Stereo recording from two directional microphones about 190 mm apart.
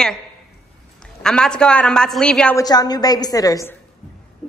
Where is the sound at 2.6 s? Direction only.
20° left (ahead or behind).